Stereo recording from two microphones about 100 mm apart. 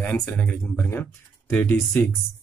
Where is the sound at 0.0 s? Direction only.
15° left (ahead or behind).